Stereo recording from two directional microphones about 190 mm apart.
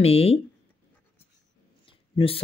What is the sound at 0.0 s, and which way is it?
Speech, 30° left (ahead or behind).